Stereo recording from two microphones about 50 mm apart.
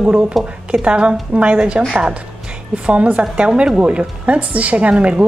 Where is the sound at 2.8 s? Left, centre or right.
Right.